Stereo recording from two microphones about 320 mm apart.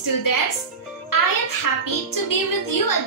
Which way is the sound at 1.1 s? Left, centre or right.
Left.